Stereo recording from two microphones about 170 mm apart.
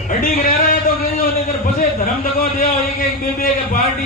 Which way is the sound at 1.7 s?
55° left (ahead or behind).